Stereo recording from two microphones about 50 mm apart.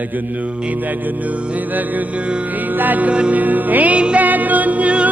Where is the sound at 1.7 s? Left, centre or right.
Right.